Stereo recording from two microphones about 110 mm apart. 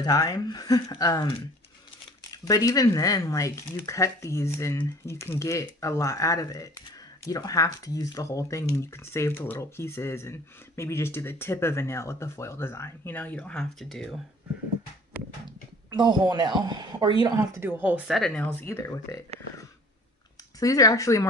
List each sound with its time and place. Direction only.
0.0 s speech: 35° left (ahead or behind)
2.3 s speech: 30° left (ahead or behind); by 14.2 s centre (ahead or behind)
16.0 s speech: 40° right (ahead or behind)
17.4 s speech: 30° right (ahead or behind)
17.6 s speech: 15° right (ahead or behind)
18.1 s speech: 5° left (ahead or behind)
18.7 s speech: 25° left (ahead or behind)
20.5 s speech: 30° left (ahead or behind)